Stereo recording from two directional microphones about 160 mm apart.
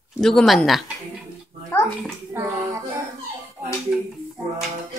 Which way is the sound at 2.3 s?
15° right (ahead or behind).